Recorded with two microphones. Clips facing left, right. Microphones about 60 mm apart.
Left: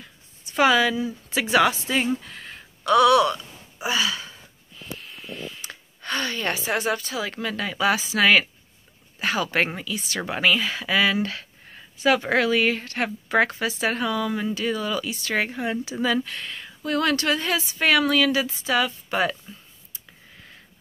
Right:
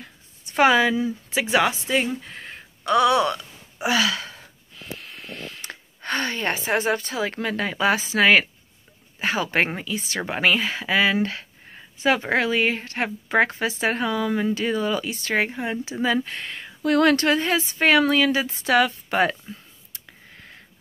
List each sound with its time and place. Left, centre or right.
0.0 s a sound: right
1.3 s a woman's voice: centre
2.2 s a sound: right
3.8 s wheeze: right
5.7 s speech: right
15.3 s speech: centre; by 16.7 s right
16.8 s speech: right
18.6 s a woman's voice: right